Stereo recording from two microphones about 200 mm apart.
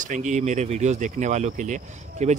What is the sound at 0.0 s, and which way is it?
Speech, 40° right (ahead or behind).